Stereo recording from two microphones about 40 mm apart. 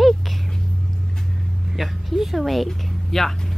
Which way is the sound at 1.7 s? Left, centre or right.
Centre.